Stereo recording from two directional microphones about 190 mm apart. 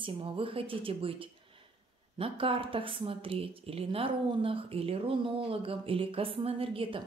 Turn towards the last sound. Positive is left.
turn(degrees=-30)  # may be behind; listen again after turning